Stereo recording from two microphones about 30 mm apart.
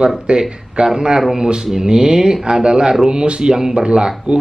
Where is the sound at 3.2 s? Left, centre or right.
Right.